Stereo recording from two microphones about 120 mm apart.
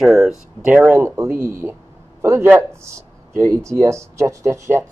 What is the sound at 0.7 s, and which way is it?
Speech, 15° right (ahead or behind).